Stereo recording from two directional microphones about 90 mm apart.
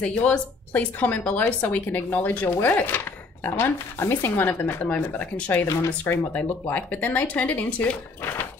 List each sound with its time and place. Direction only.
0.0 s a woman's voice: 15° left (ahead or behind)